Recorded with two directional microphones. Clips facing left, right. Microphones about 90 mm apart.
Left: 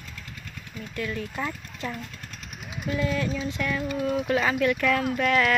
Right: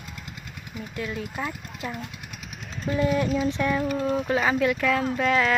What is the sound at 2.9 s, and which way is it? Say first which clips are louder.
Speech: right 4 dB; 25° right (ahead or behind).